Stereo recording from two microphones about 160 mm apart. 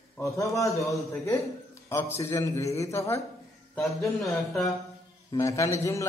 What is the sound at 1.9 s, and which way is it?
A man's voice, 15° left (ahead or behind).